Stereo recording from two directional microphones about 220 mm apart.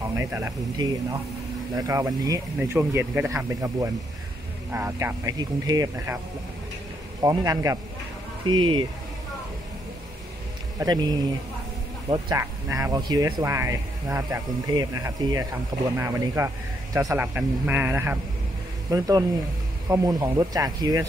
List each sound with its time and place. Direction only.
0.1 s speech: 10° right (ahead or behind)
7.2 s speech: 15° right (ahead or behind)
10.8 s speech: 20° right (ahead or behind)